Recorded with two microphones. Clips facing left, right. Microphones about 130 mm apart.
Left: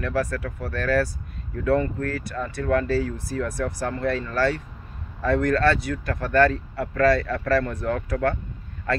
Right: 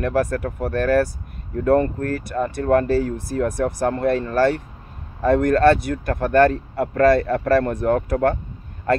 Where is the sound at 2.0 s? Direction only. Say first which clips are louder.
Right 5 dB; 50° right (ahead or behind).